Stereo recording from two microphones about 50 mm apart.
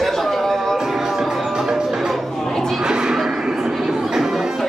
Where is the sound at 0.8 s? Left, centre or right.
Centre.